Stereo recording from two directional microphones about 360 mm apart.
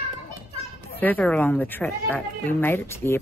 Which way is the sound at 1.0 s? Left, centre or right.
Centre.